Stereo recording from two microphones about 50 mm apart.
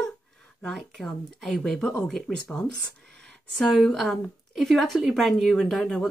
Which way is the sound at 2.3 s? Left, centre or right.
Left.